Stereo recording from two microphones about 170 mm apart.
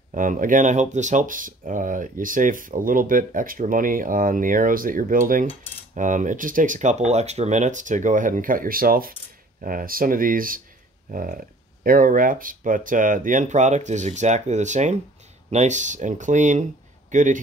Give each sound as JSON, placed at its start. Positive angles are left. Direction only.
{"t": 0.1, "sound": "speech", "side_deg": -50}